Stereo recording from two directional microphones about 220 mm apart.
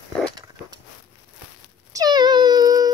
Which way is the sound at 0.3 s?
20° right (ahead or behind).